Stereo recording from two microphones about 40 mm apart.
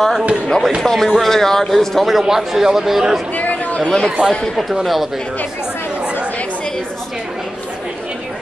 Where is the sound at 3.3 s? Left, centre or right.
Left.